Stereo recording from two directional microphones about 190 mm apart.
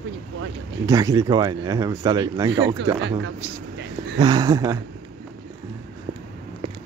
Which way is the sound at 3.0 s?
70° right (ahead or behind).